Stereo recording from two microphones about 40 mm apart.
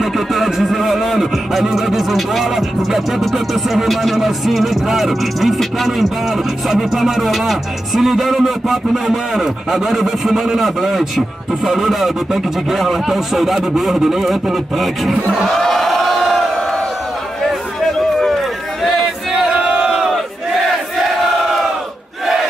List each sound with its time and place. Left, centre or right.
0.0 s a man's voice: centre
15.4 s crowd: centre
17.9 s run: centre
18.9 s choir: centre
19.6 s crowd: right
19.9 s battle cry: centre